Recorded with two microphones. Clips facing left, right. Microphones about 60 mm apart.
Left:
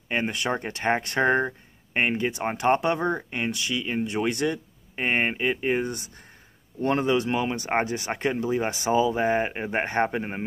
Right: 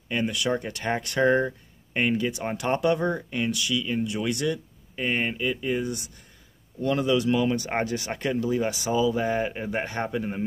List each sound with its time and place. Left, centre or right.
0.1 s speech: left